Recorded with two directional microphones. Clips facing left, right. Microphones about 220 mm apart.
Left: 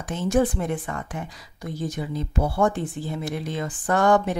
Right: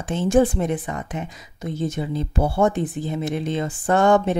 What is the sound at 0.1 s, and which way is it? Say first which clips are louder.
A woman's voice: right 4 dB; 30° right (ahead or behind).